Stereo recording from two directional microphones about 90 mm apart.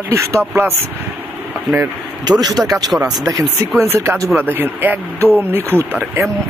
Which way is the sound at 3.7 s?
30° right (ahead or behind).